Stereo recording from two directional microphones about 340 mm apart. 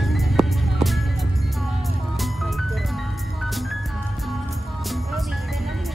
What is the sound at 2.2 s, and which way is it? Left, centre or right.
Music, centre.